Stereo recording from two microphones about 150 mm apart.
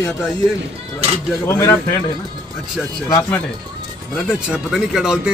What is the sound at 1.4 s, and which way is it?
Speech, 20° left (ahead or behind).